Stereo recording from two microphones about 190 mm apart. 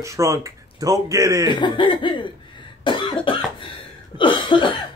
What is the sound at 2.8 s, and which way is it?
Cough, 25° left (ahead or behind).